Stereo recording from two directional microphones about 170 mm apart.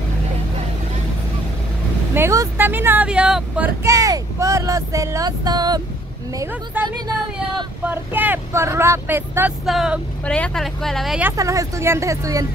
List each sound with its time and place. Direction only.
2.1 s speech: 15° right (ahead or behind)
3.8 s speech: 20° right (ahead or behind)
9.7 s speech: centre (ahead or behind)
11.3 s speech: 20° right (ahead or behind)